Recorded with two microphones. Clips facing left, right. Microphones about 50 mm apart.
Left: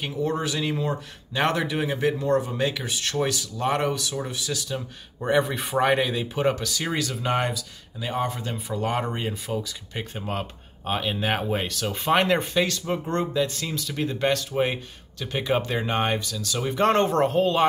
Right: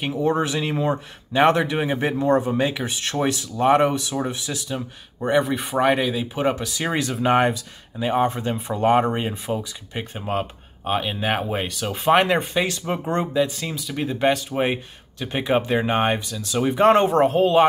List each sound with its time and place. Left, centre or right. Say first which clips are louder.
0.0 s speech: right 5 dB; centre
5.2 s speech: right 2 dB; centre; by 9.7 s right
9.7 s speech: right 2 dB; centre